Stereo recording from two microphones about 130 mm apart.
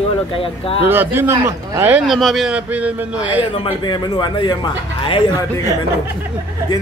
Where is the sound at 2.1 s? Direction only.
Centre (ahead or behind).